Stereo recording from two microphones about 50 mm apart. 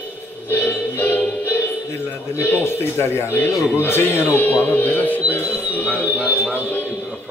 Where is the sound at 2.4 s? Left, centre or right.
Left.